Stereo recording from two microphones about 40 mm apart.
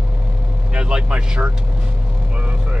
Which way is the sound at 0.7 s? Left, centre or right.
Right.